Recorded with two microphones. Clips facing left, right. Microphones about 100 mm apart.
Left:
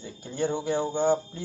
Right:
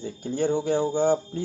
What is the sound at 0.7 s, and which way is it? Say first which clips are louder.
Speech: right 2 dB; 10° right (ahead or behind).